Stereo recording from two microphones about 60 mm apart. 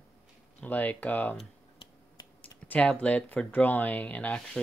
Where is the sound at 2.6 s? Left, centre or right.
Left.